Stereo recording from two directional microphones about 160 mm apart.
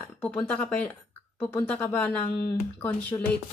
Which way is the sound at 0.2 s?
10° left (ahead or behind).